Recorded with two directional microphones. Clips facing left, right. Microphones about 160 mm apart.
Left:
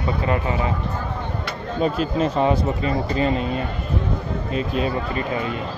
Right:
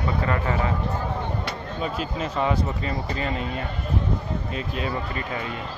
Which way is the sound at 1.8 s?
35° left (ahead or behind).